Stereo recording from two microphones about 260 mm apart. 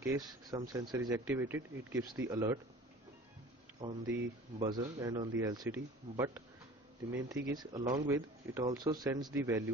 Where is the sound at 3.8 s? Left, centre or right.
Centre.